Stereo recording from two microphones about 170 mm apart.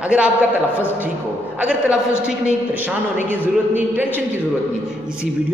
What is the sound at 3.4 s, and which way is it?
Mantra, 10° right (ahead or behind).